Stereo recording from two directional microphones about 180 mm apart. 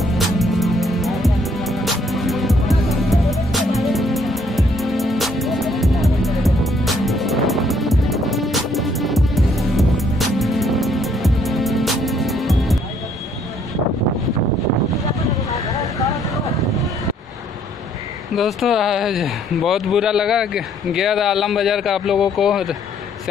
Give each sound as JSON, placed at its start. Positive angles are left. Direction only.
{"t": 0.0, "sound": "music", "side_deg": 0}
{"t": 15.7, "sound": "vehicle", "side_deg": 20}
{"t": 18.3, "sound": "speech", "side_deg": 0}